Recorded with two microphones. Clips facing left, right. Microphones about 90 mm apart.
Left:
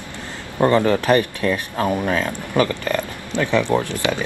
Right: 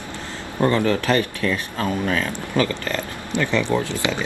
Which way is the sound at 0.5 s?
20° left (ahead or behind).